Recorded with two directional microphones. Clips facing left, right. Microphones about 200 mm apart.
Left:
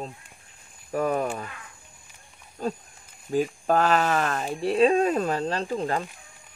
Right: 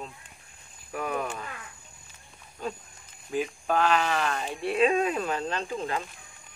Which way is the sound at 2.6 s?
40° left (ahead or behind).